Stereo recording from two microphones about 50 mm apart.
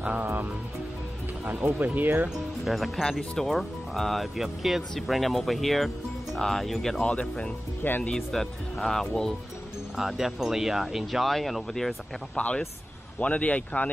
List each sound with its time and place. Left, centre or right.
0.2 s speech: right
2.6 s speech: centre
7.0 s speech: left
8.1 s speech: centre
9.9 s speech: centre
12.4 s speech: left